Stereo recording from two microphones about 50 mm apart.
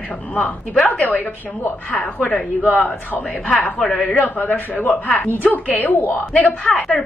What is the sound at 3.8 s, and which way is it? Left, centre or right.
Speech, centre.